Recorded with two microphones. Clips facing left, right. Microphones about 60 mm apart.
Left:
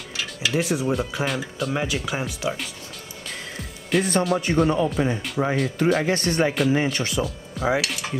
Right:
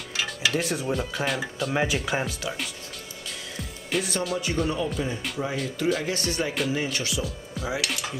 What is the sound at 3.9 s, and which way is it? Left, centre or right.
Speech, centre.